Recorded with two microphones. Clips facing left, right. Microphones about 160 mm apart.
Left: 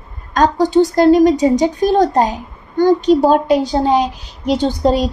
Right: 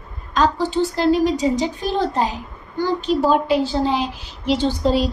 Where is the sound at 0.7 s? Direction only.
40° left (ahead or behind).